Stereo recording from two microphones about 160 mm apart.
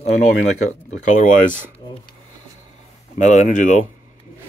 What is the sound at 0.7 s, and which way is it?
Speech, 50° left (ahead or behind).